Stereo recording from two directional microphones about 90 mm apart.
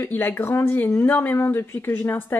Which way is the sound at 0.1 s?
25° left (ahead or behind).